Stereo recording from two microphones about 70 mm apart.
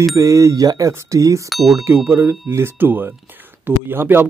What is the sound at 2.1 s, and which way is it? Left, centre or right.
Speech, right.